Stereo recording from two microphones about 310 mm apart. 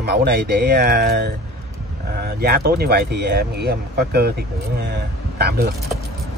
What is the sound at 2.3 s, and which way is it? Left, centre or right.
Speech, right.